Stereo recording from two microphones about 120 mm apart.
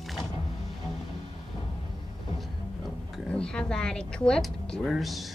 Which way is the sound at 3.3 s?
10° left (ahead or behind).